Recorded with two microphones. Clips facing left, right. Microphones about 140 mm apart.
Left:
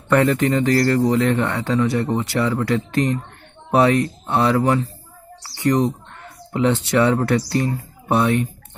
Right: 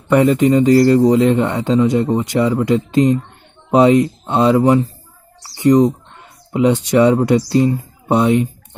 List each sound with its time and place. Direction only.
0.1 s a man's voice: 15° right (ahead or behind)